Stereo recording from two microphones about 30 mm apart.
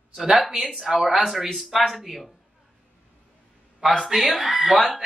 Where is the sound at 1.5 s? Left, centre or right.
Centre.